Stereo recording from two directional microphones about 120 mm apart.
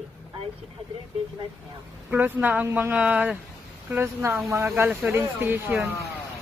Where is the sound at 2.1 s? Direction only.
15° right (ahead or behind).